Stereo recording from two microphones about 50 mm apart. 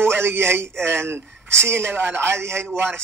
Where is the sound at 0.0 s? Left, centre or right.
Right.